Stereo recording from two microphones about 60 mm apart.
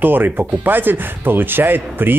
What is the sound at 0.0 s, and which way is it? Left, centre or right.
Speech, right.